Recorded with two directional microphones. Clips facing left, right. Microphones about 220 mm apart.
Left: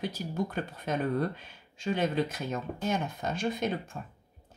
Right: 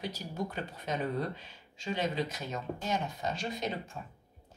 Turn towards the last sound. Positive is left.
turn(degrees=50)  # may be behind; listen again after turning